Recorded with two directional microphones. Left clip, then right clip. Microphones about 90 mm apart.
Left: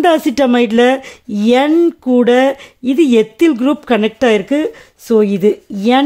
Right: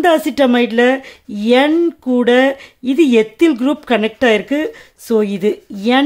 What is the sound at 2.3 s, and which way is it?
A woman's voice, 45° left (ahead or behind).